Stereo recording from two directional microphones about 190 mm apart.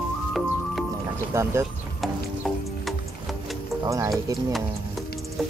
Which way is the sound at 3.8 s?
15° right (ahead or behind).